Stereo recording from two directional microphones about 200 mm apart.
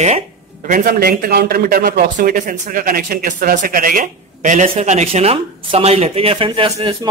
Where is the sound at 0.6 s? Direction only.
45° right (ahead or behind).